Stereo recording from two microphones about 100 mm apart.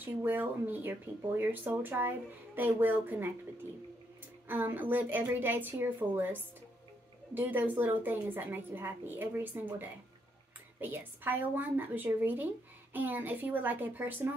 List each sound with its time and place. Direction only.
0.0 s speech: 20° right (ahead or behind)
4.5 s speech: 20° right (ahead or behind)